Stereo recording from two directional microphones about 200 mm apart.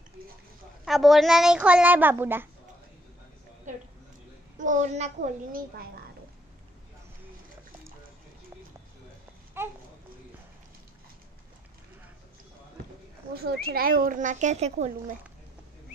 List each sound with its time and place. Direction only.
0.8 s a child's voice: centre (ahead or behind)
3.7 s a sound: 40° right (ahead or behind)
4.6 s a child's voice: 40° right (ahead or behind)
9.6 s speech: 10° right (ahead or behind)
13.3 s speech: 50° right (ahead or behind); by 15.1 s 35° right (ahead or behind)